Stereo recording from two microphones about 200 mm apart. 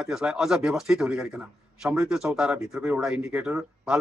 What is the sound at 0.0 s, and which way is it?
A man's voice, centre (ahead or behind).